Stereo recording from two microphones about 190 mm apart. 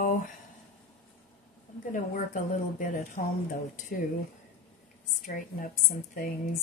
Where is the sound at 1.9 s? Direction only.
40° left (ahead or behind).